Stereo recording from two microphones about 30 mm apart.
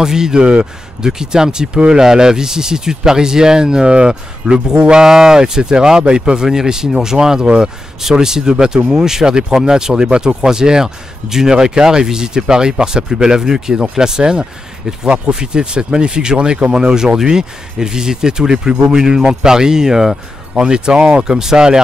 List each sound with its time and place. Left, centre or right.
0.0 s speech: right
5.0 s a man's voice: right
20.5 s speech: right